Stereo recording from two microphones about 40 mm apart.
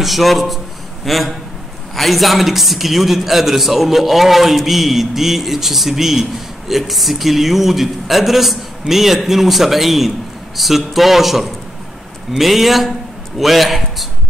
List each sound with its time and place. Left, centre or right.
0.0 s a man's voice: centre